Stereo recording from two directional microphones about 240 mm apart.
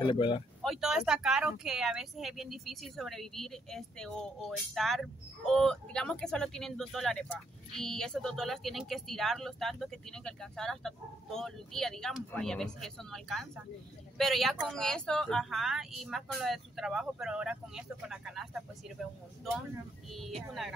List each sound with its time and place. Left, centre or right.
0.0 s speech: centre
0.6 s speech: centre
20.1 s speech: centre